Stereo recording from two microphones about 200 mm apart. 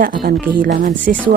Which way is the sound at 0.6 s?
45° right (ahead or behind).